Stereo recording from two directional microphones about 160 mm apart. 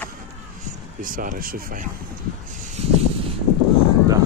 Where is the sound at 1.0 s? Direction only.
60° right (ahead or behind).